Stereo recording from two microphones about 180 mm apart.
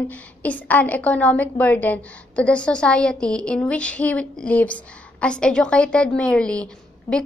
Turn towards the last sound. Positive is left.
turn(degrees=5)  # may be behind; listen again after turning